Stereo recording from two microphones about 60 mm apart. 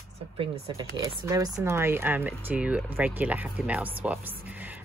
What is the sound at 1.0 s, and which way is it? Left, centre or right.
Speech, right.